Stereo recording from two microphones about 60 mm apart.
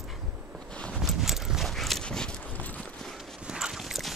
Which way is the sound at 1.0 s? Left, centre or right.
Centre.